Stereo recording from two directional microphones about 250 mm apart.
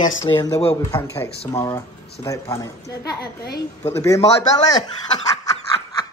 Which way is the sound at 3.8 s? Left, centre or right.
Centre.